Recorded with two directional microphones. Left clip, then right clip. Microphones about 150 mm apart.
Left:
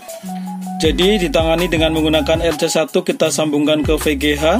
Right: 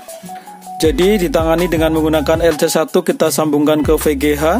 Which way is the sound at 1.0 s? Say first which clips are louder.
Left 1 dB; 30° right (ahead or behind).